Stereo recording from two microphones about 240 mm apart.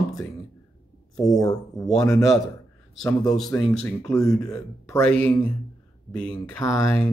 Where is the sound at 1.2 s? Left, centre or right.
Centre.